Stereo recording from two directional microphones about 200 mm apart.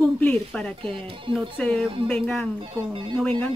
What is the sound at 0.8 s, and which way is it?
Speech, 25° right (ahead or behind).